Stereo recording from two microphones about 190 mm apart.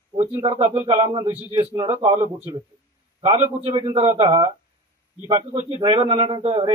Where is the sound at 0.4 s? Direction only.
25° right (ahead or behind).